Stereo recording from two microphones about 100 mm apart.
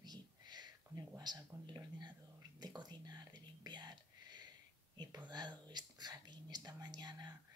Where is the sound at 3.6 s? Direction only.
45° right (ahead or behind).